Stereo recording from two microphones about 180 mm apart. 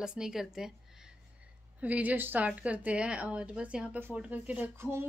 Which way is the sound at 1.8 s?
10° right (ahead or behind).